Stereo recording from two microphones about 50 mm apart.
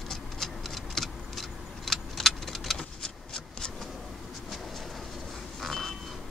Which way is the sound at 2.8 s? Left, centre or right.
Centre.